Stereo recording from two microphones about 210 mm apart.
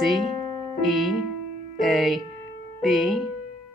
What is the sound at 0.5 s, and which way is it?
Music, 20° left (ahead or behind).